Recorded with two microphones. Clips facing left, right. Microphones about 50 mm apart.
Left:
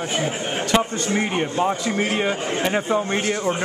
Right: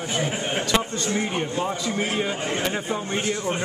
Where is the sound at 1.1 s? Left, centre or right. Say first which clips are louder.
Left 4 dB; left.